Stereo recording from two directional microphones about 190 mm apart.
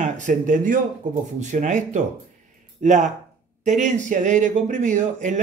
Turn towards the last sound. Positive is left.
turn(degrees=-40)  # may be behind; listen again after turning